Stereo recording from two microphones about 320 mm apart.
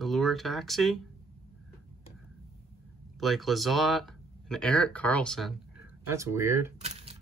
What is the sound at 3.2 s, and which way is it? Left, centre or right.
Speech, centre.